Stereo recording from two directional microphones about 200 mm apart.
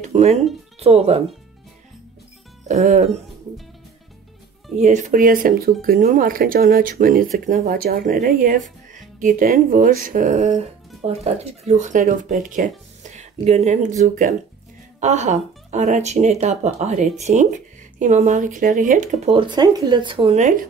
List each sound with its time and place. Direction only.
0.0 s speech: 35° right (ahead or behind)
2.7 s speech: 35° right (ahead or behind)
4.7 s speech: 40° right (ahead or behind)